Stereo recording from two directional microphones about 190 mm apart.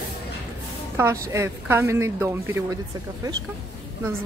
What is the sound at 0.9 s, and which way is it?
A woman's voice, 15° right (ahead or behind).